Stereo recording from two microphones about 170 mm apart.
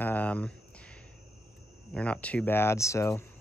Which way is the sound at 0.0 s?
10° left (ahead or behind).